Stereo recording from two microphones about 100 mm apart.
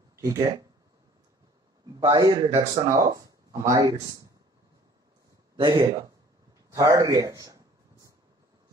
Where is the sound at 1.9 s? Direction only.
55° right (ahead or behind); by 3.9 s 35° right (ahead or behind).